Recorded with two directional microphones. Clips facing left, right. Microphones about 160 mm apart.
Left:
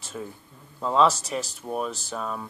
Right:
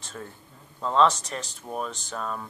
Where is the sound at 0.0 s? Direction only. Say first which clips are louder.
Left 4 dB; 10° left (ahead or behind).